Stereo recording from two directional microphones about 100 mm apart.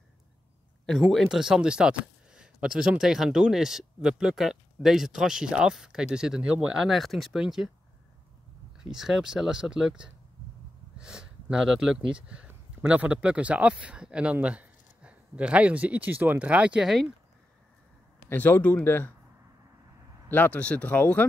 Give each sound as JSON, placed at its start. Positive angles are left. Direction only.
{"t": 1.1, "sound": "speech", "side_deg": 0}
{"t": 6.9, "sound": "speech", "side_deg": 0}
{"t": 8.7, "sound": "speech", "side_deg": -5}
{"t": 18.3, "sound": "speech", "side_deg": 15}
{"t": 20.2, "sound": "speech", "side_deg": 20}